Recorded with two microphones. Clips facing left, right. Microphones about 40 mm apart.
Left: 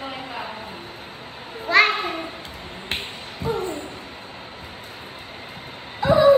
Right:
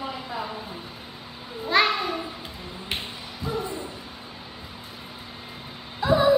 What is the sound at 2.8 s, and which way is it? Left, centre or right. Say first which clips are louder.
Finger snapping: left 3 dB; left.